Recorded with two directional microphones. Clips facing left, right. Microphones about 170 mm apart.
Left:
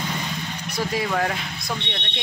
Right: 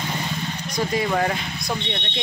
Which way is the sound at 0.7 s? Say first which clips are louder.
Right 2 dB; 5° left (ahead or behind).